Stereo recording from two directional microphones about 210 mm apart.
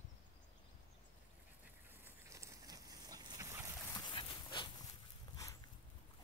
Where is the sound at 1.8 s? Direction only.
10° right (ahead or behind).